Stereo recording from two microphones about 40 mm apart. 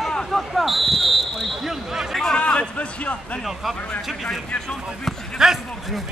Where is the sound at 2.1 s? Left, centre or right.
Centre.